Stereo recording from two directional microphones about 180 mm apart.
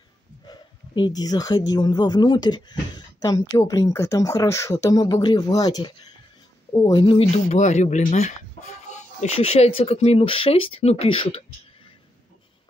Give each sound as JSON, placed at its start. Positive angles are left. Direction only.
{"t": 0.5, "sound": "a sound", "side_deg": 25}
{"t": 1.7, "sound": "speech", "side_deg": 25}
{"t": 7.0, "sound": "speech", "side_deg": 30}